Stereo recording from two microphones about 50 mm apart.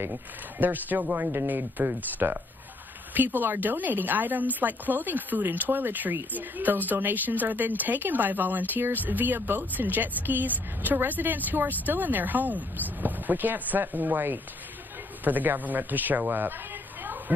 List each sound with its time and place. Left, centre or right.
0.0 s speech: right
1.1 s speech: right
1.8 s speech: right